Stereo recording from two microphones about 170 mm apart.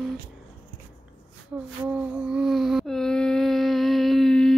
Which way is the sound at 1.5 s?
5° right (ahead or behind).